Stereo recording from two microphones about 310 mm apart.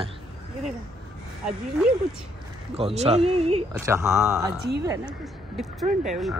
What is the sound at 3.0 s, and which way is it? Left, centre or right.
Speech, centre.